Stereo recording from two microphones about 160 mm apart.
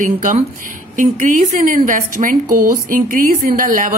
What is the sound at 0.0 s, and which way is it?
A woman's voice, 55° right (ahead or behind).